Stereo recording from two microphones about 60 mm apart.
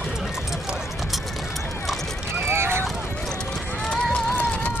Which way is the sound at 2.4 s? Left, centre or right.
Right.